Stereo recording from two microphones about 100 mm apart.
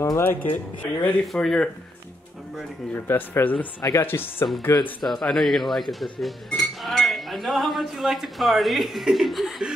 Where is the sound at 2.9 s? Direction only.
25° left (ahead or behind).